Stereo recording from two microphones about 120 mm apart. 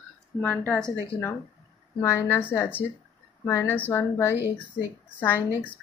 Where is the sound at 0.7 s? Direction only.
5° left (ahead or behind).